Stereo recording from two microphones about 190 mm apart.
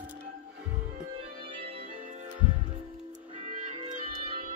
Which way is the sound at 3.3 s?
40° right (ahead or behind).